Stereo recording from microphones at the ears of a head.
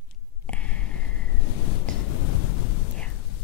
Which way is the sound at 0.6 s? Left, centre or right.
Left.